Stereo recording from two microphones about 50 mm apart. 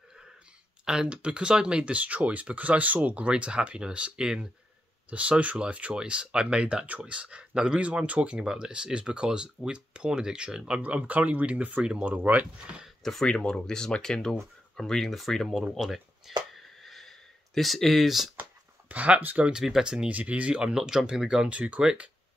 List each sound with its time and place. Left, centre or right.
0.8 s speech: centre
10.8 s speech: right
13.0 s speech: centre
15.4 s speech: centre
15.8 s a sound: centre
18.3 s a sound: right
19.5 s speech: centre
20.1 s speech: right; by 21.5 s centre
21.5 s speech: right